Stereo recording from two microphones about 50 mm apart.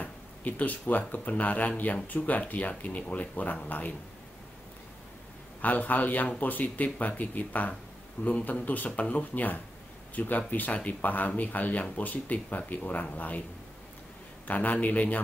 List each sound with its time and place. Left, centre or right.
0.0 s speech: left
5.6 s speech: left
14.5 s speech: left